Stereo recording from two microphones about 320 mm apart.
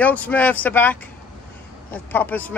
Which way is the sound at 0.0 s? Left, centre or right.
Centre.